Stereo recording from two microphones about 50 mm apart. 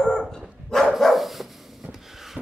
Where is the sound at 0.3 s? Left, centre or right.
Centre.